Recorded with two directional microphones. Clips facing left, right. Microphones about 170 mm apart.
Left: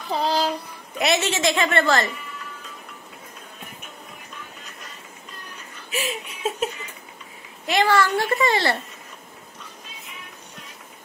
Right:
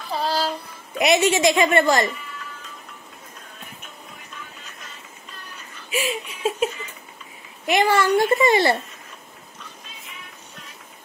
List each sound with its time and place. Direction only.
0.1 s child singing: 20° left (ahead or behind)
0.9 s a woman's voice: 15° right (ahead or behind)
5.9 s a sound: 10° right (ahead or behind)
7.6 s a woman's voice: 20° right (ahead or behind)